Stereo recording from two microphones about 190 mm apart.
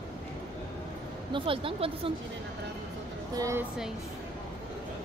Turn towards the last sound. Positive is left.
turn(degrees=-15)  # may be behind; listen again after turning